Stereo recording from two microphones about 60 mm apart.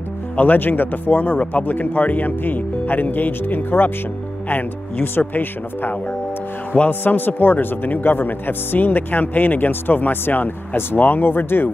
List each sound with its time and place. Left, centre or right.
0.4 s speech: left